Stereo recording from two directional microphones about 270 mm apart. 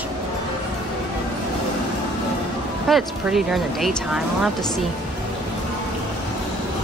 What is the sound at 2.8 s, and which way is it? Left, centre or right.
Speech, centre.